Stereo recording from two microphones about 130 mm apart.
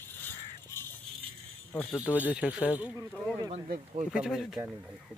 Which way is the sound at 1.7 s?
15° left (ahead or behind).